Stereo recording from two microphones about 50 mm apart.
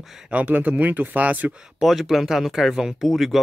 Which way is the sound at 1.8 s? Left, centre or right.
Centre.